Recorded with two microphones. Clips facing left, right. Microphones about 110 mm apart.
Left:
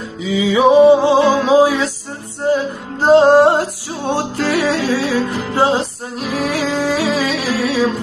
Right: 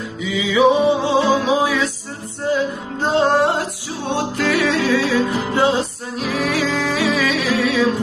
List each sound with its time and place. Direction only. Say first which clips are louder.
0.2 s music: left 2 dB; 30° left (ahead or behind)
3.1 s music: left 7 dB; 40° left (ahead or behind)